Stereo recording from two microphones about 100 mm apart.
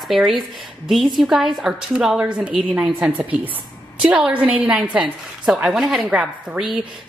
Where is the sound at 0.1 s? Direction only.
Centre (ahead or behind).